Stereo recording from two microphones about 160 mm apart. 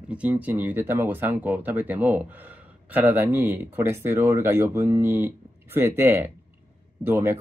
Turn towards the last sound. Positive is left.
turn(degrees=-15)  # may be behind; listen again after turning